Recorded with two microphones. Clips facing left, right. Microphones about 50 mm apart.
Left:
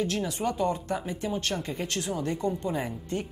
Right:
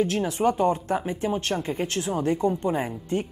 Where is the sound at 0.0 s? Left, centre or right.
Right.